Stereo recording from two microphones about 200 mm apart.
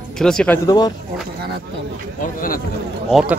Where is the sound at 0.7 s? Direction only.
20° left (ahead or behind).